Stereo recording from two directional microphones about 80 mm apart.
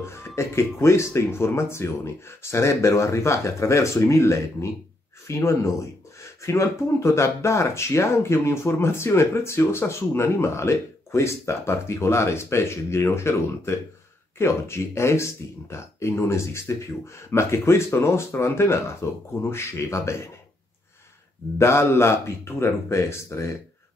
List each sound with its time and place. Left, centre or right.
0.0 s speech: left
21.5 s speech: left